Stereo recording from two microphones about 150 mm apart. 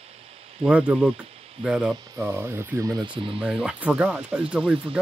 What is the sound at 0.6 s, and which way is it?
Speech, 10° right (ahead or behind).